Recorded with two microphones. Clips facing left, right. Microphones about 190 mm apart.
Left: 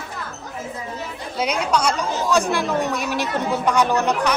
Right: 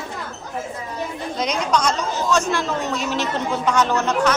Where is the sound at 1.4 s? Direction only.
10° left (ahead or behind).